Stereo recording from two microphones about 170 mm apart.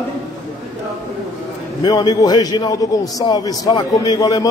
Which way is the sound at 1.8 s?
25° left (ahead or behind).